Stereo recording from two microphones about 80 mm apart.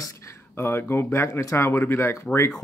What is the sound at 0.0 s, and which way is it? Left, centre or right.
Speech, left.